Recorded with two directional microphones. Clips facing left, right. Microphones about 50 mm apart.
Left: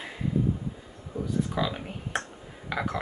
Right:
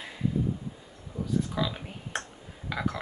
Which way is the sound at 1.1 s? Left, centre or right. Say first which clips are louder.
Left 3 dB; centre.